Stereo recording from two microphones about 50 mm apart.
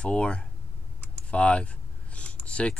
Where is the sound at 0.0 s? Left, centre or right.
Left.